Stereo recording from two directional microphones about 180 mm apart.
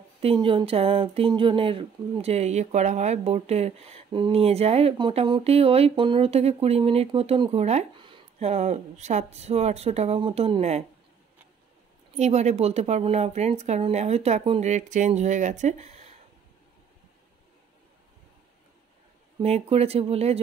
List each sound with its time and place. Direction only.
0.2 s speech: 30° right (ahead or behind)
12.2 s speech: 40° right (ahead or behind)
19.4 s speech: 35° right (ahead or behind)